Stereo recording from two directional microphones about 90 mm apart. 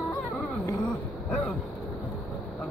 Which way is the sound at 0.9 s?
15° left (ahead or behind).